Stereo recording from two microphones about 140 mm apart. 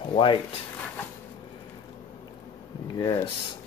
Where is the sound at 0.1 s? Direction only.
35° left (ahead or behind).